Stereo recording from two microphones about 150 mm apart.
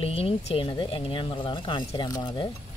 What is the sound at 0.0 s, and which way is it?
Speech, 40° left (ahead or behind).